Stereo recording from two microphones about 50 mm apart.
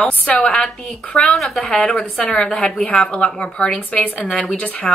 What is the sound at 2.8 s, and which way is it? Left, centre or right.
Speech, left.